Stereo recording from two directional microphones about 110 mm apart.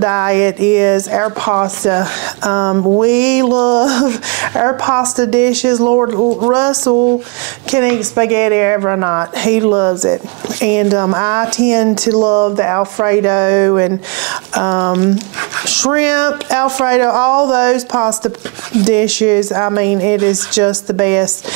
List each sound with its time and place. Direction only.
0.0 s speech: 20° right (ahead or behind)
2.7 s speech: 35° right (ahead or behind)
3.1 s a sound: 15° right (ahead or behind)
5.9 s speech: 25° right (ahead or behind)
6.4 s a sound: 15° right (ahead or behind)
7.7 s speech: 20° right (ahead or behind)